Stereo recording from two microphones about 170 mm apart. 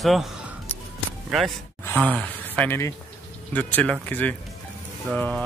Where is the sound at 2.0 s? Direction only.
5° left (ahead or behind).